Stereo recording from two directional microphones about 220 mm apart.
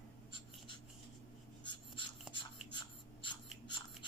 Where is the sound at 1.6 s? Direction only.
20° left (ahead or behind).